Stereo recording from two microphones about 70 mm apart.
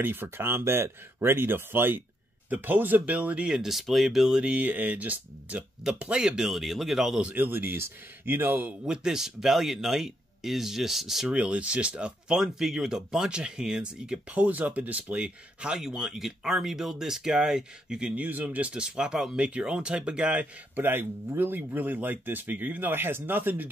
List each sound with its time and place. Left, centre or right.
0.0 s speech: right; by 7.2 s centre
7.3 s speech: right
8.8 s speech: centre
11.2 s speech: centre
20.7 s speech: right